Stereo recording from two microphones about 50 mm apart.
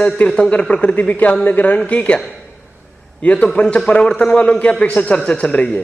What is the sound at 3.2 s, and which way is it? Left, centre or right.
A man's voice, left.